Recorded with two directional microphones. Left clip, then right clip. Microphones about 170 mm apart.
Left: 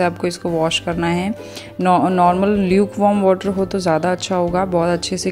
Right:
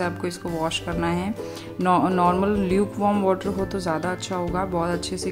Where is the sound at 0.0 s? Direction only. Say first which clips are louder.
Left 8 dB; 25° left (ahead or behind).